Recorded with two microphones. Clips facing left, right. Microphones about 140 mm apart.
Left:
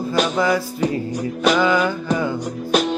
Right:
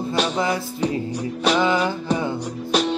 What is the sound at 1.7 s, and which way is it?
Music, 30° right (ahead or behind).